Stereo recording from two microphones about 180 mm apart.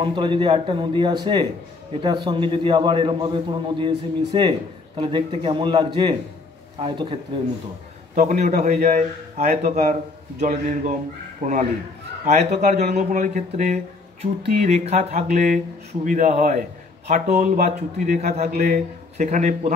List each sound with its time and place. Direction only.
0.0 s a man's voice: 25° right (ahead or behind)
8.1 s speech: 45° right (ahead or behind)
18.5 s a man's voice: 55° right (ahead or behind)
19.1 s speech: 45° right (ahead or behind)